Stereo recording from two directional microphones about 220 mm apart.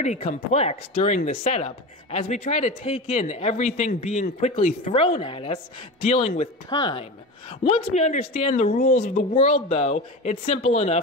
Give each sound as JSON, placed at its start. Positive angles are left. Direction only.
{"t": 0.0, "sound": "a woman's voice", "side_deg": 30}
{"t": 8.7, "sound": "speech", "side_deg": 40}